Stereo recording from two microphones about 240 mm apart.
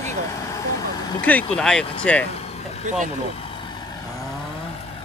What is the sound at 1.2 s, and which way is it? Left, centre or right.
Speech, centre.